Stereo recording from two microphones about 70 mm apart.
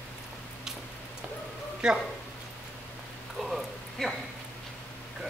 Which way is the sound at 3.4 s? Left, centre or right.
Centre.